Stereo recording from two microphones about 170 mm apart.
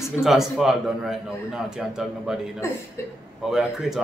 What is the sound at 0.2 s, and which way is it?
A man's voice, centre (ahead or behind).